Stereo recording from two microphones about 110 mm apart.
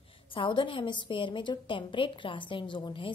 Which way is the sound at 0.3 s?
50° left (ahead or behind).